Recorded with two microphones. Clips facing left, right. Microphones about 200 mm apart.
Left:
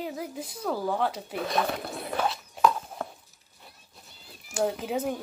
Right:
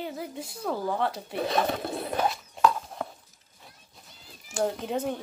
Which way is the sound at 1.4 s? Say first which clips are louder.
Right 2 dB; 30° right (ahead or behind).